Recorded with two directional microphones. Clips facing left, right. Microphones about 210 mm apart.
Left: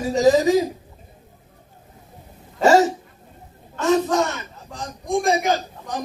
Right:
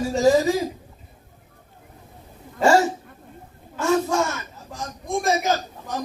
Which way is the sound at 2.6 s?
20° left (ahead or behind).